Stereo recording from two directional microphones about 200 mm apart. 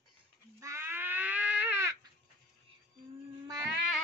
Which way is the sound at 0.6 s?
15° right (ahead or behind).